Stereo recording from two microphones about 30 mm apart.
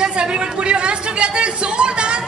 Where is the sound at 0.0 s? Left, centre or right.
Right.